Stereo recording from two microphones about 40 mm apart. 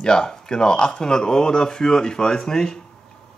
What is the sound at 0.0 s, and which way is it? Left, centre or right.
Speech, centre.